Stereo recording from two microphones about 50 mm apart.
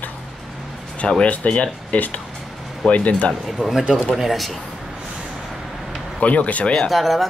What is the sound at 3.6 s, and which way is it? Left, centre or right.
Speech, centre.